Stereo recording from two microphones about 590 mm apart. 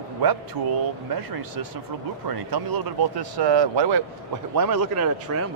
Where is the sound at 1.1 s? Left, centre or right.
Right.